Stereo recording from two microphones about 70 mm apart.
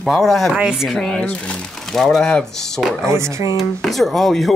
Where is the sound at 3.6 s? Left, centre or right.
Centre.